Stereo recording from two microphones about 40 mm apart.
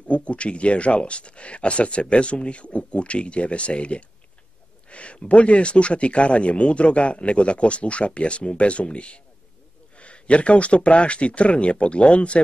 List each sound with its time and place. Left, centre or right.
0.1 s speech: left